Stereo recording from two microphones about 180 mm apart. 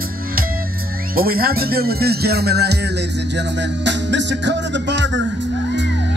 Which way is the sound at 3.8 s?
80° right.